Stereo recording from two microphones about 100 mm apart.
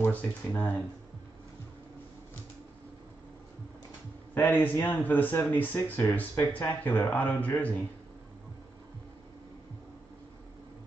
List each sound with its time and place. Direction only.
0.0 s speech: 20° left (ahead or behind)
4.3 s speech: 20° left (ahead or behind)